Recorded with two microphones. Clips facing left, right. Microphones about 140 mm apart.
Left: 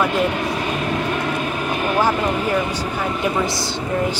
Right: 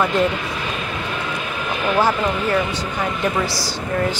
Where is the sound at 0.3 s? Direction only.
45° left (ahead or behind).